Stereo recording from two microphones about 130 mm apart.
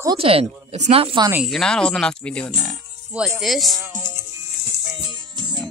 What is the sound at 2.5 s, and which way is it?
Music, 5° right (ahead or behind).